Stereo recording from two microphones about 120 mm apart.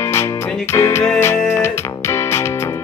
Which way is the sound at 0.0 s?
20° left (ahead or behind).